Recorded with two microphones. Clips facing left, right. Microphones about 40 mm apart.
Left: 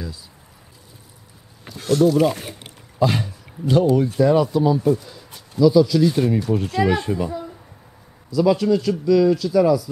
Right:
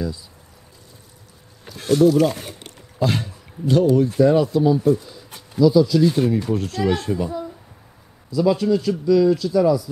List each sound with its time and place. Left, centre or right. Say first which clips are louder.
1.8 s a sound: right 1 dB; centre
2.1 s a child's voice: even; centre
7.1 s a child's voice: even; centre
8.3 s speech: left 1 dB; centre